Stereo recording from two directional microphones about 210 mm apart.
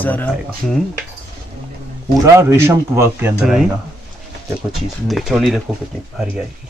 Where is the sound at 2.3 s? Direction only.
15° right (ahead or behind).